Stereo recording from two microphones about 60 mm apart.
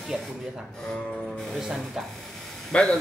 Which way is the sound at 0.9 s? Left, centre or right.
Centre.